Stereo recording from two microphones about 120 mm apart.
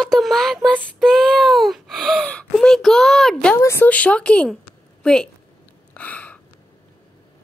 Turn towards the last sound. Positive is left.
turn(degrees=10)  # may be behind; listen again after turning